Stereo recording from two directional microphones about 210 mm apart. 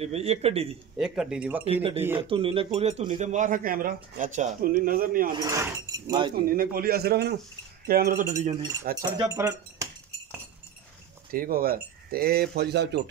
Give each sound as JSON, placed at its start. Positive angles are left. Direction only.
{"t": 0.0, "sound": "speech", "side_deg": -30}
{"t": 0.9, "sound": "speech", "side_deg": 0}
{"t": 1.7, "sound": "speech", "side_deg": -25}
{"t": 2.0, "sound": "speech", "side_deg": -10}
{"t": 2.2, "sound": "speech", "side_deg": -25}
{"t": 5.3, "sound": "speech", "side_deg": -15}
{"t": 6.5, "sound": "speech", "side_deg": -45}
{"t": 8.9, "sound": "speech", "side_deg": -20}
{"t": 11.3, "sound": "speech", "side_deg": -45}